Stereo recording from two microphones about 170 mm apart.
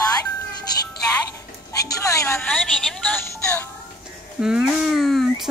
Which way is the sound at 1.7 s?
20° left (ahead or behind).